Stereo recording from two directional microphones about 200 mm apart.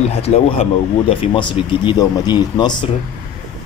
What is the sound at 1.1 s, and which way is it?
Speech, 25° left (ahead or behind).